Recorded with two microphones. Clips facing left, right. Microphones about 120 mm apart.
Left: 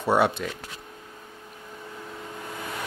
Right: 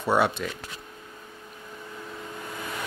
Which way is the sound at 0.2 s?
45° left (ahead or behind).